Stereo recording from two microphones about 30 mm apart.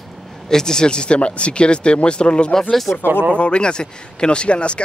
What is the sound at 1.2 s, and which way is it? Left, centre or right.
Speech, left.